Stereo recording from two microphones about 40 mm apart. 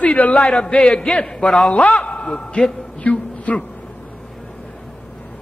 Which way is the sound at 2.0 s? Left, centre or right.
Left.